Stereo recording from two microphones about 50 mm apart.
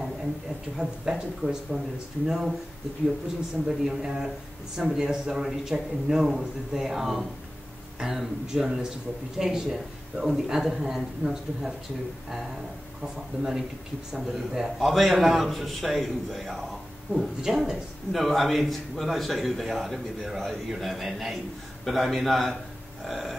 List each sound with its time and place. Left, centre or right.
0.7 s a man's voice: centre
3.6 s a man's voice: centre
13.0 s a man's voice: centre